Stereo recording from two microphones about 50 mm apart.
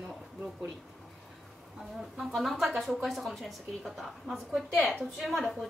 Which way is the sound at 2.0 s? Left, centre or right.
Centre.